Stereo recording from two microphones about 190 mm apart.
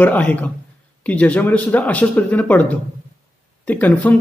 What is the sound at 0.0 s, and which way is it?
Speech, 10° left (ahead or behind).